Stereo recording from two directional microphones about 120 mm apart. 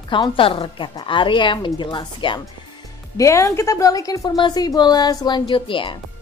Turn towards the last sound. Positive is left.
turn(degrees=45)  # may be behind; listen again after turning